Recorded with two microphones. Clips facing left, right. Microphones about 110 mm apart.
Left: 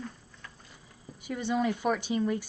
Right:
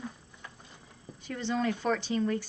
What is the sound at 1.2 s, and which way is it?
Speech, 10° left (ahead or behind).